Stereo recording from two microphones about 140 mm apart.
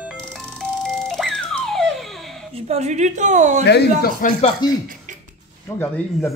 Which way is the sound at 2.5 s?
55° right (ahead or behind).